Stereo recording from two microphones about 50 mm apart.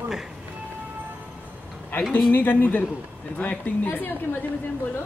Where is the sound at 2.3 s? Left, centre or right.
Left.